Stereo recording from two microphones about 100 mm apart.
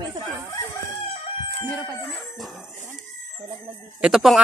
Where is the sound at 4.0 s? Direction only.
5° right (ahead or behind).